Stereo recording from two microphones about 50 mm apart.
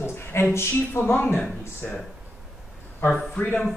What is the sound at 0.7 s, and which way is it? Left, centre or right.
Speech, left.